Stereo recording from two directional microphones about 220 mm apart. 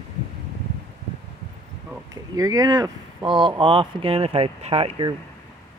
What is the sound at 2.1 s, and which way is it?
Speech, 15° right (ahead or behind).